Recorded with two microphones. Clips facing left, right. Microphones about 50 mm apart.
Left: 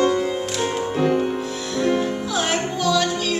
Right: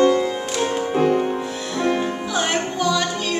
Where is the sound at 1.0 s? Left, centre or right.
Right.